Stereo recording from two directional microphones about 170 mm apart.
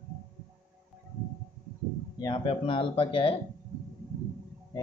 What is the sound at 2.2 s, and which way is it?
Speech, 30° left (ahead or behind).